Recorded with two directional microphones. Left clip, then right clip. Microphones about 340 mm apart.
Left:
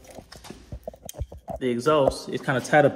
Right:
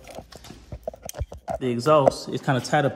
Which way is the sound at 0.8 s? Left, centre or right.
Left.